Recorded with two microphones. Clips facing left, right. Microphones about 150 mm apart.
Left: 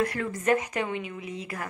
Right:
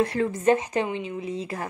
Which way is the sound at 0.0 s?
25° right (ahead or behind).